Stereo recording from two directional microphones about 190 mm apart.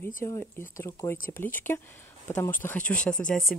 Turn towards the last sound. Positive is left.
turn(degrees=5)  # may be behind; listen again after turning